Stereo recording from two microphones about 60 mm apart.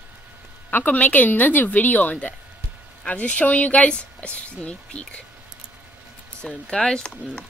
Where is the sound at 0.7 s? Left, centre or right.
Left.